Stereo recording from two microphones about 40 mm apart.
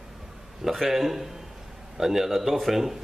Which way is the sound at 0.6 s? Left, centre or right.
Centre.